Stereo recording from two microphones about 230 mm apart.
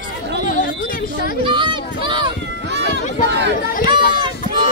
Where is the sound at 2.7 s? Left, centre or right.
Right.